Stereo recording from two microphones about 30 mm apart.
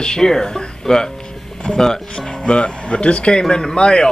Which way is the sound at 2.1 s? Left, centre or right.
Left.